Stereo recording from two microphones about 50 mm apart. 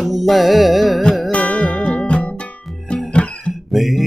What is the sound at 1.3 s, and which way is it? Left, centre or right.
Music, left.